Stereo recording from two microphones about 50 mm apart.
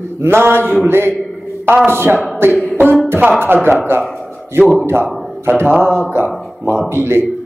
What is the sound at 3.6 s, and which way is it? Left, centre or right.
Mantra, right.